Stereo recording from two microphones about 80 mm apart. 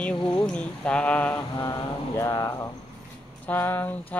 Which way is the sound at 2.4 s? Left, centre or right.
Left.